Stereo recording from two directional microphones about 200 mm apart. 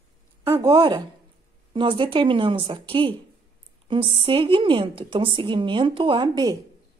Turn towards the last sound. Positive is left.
turn(degrees=-20)  # may be behind; listen again after turning